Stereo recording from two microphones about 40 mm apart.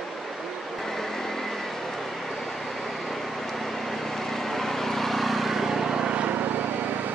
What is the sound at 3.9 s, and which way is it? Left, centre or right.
Vehicle, centre.